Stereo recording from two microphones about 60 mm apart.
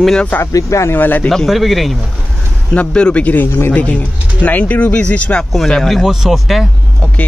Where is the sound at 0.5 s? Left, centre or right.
Left.